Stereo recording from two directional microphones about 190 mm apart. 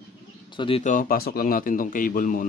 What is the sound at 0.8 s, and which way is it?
A man's voice, 45° left (ahead or behind).